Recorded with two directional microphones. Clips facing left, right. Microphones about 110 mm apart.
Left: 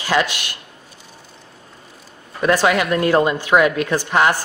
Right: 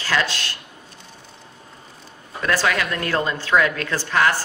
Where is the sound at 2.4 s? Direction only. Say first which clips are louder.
Left 5 dB; 20° left (ahead or behind).